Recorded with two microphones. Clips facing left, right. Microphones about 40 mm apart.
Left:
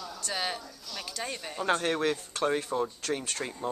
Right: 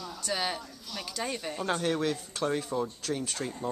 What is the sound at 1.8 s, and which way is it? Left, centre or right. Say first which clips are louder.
Speech: left 1 dB; left.